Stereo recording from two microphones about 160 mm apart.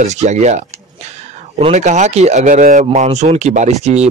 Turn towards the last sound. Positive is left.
turn(degrees=-45)  # may be behind; listen again after turning